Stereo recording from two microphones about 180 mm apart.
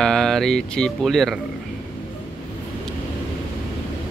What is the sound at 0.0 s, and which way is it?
Speech, 5° left (ahead or behind).